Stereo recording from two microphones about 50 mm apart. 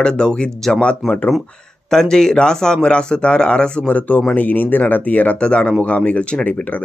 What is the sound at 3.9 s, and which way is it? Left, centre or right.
Speech, left.